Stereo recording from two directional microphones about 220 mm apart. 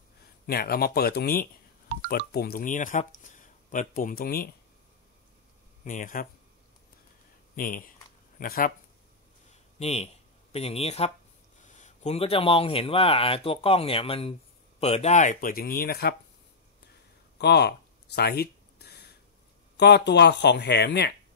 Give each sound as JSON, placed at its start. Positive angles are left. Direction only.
{"t": 0.5, "sound": "speech", "side_deg": 45}
{"t": 5.9, "sound": "speech", "side_deg": 35}
{"t": 7.5, "sound": "speech", "side_deg": 40}
{"t": 9.8, "sound": "speech", "side_deg": 30}
{"t": 17.4, "sound": "a sound", "side_deg": 50}
{"t": 19.8, "sound": "speech", "side_deg": 50}